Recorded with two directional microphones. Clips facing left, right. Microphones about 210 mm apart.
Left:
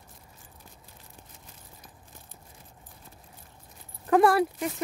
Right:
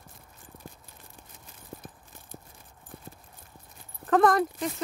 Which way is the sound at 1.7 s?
60° right (ahead or behind).